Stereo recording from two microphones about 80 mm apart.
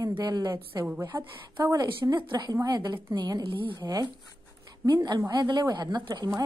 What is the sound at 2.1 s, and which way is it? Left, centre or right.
Speech, right.